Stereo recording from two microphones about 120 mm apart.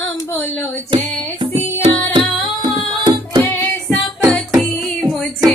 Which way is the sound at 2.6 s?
40° right (ahead or behind).